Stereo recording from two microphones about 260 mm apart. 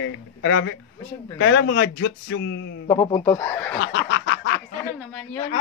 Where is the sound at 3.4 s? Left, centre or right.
Centre.